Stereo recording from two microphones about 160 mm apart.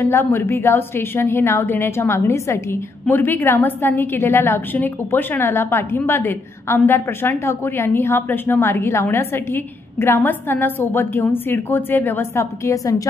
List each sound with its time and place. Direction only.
0.0 s a woman's voice: 15° left (ahead or behind)